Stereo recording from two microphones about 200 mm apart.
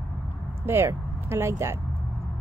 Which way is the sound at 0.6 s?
10° right (ahead or behind).